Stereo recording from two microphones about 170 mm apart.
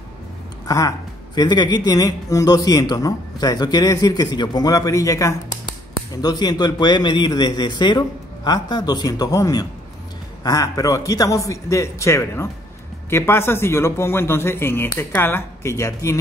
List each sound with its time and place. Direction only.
0.7 s a man's voice: 20° left (ahead or behind)